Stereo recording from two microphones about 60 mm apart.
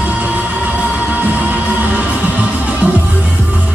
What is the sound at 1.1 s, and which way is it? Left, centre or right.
Music, right.